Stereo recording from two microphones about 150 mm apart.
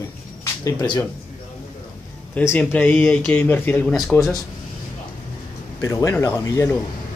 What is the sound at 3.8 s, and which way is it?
Speech, centre (ahead or behind).